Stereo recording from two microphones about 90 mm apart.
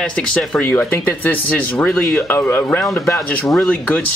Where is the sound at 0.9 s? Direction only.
25° left (ahead or behind).